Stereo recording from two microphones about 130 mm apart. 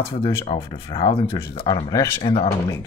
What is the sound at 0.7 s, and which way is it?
Speech, 35° left (ahead or behind).